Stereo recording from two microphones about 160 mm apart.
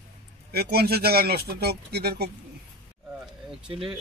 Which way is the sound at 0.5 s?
80° right.